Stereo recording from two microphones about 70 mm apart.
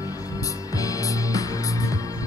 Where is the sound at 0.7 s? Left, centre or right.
Left.